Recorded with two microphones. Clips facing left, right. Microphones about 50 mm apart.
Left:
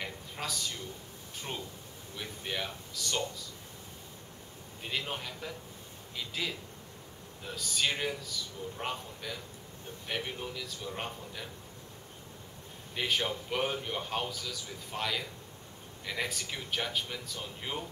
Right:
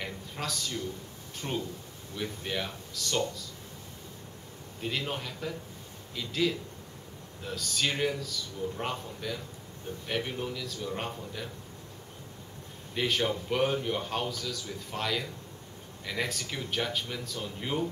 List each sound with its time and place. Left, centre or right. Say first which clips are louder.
0.0 s a sound: right 2 dB; centre
2.1 s a man's voice: right 3 dB; centre
4.8 s a man's voice: right 3 dB; centre
10.9 s a man's voice: right 3 dB; centre
12.9 s a man's voice: right 3 dB; centre